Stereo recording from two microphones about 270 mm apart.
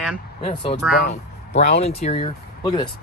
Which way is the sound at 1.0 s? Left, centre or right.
Left.